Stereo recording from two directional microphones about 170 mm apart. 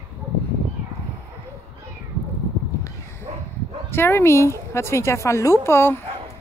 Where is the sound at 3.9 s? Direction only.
15° left (ahead or behind).